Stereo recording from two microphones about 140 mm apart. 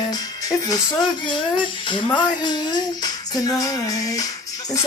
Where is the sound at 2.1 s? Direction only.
30° left (ahead or behind).